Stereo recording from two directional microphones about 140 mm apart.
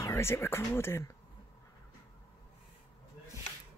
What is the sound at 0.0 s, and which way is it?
Speech, 20° left (ahead or behind).